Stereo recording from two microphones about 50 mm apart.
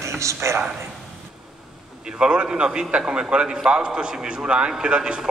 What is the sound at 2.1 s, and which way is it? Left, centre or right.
A man's voice, centre.